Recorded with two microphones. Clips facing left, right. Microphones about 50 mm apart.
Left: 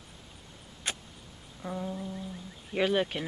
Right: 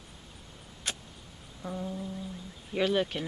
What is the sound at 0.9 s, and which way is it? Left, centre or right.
Vehicle, centre.